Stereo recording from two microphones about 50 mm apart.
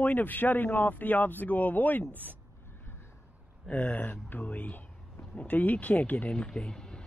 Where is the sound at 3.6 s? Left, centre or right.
Left.